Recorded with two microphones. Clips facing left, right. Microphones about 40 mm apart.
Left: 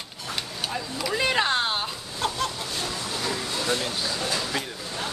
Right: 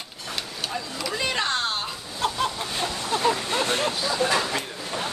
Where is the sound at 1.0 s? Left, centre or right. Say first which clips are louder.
Left 3 dB; centre.